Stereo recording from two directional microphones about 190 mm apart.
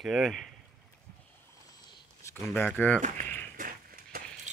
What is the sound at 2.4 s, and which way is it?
Speech, 10° left (ahead or behind).